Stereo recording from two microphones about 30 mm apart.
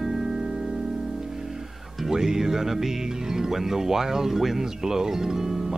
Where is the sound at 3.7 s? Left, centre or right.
Centre.